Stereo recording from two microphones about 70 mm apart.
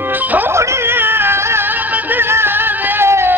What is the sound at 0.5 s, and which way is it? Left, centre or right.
Music, right.